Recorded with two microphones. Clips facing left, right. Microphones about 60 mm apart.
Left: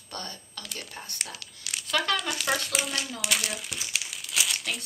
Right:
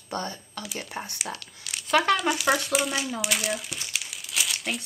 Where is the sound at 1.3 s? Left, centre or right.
Centre.